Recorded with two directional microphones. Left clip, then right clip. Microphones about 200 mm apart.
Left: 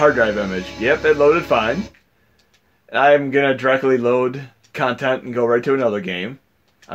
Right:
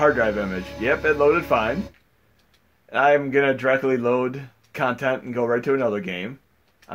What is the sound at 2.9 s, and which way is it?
Speech, 30° left (ahead or behind).